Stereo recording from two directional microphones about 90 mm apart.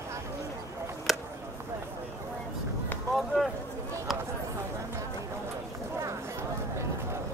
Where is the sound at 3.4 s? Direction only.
5° left (ahead or behind).